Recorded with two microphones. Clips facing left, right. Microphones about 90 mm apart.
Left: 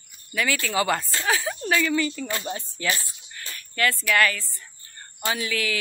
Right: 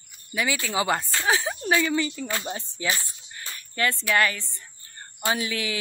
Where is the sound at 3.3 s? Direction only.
25° right (ahead or behind).